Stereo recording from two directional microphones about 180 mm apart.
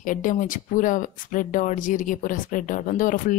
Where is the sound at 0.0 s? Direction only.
45° left (ahead or behind).